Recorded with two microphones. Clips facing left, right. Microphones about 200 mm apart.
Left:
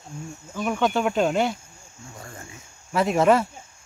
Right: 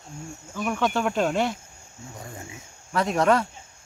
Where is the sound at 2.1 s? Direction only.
20° right (ahead or behind).